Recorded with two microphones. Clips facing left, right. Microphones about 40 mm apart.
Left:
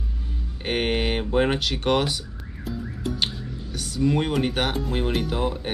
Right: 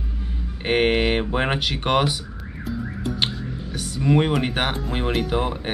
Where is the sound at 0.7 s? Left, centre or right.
Centre.